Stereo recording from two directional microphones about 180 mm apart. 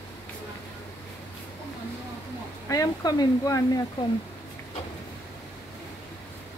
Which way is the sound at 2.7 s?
20° left (ahead or behind).